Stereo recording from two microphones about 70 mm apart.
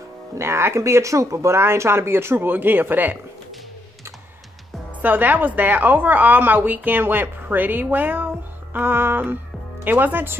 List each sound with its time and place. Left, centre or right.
0.4 s speech: right
5.0 s a woman's voice: right